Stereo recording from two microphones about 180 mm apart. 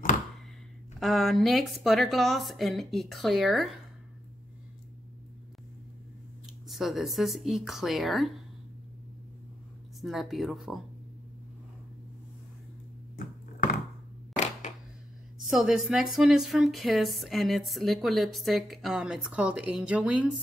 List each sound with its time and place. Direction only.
0.9 s speech: centre (ahead or behind)
6.7 s speech: centre (ahead or behind)
9.9 s speech: centre (ahead or behind)
13.2 s a sound: 50° left (ahead or behind)
15.4 s speech: 5° right (ahead or behind)